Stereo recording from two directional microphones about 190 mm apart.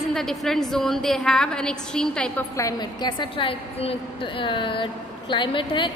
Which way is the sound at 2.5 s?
20° left (ahead or behind).